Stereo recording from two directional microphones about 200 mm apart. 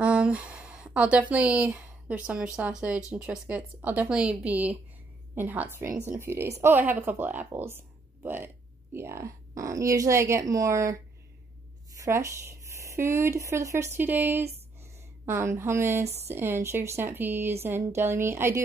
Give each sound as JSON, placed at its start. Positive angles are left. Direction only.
{"t": 0.0, "sound": "speech", "side_deg": -5}
{"t": 12.0, "sound": "speech", "side_deg": -15}